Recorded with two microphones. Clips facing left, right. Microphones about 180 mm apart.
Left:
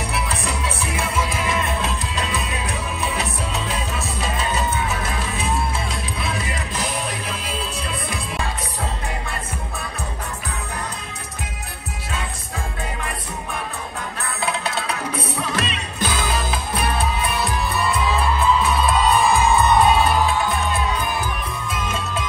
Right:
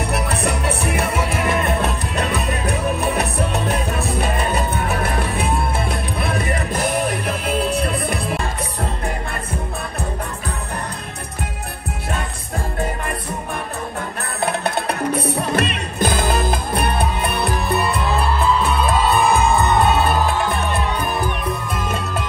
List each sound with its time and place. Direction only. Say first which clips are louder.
0.1 s music: right 5 dB; 60° right (ahead or behind)
14.4 s music: right 5 dB; 60° right (ahead or behind)